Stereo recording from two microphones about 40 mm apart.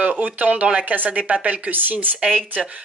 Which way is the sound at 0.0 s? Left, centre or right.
Right.